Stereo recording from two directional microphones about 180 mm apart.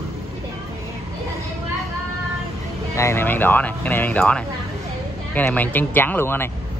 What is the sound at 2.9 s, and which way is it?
Speech, 15° left (ahead or behind).